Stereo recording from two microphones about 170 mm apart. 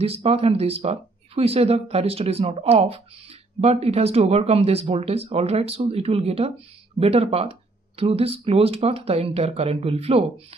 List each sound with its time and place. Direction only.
0.0 s speech: 35° right (ahead or behind)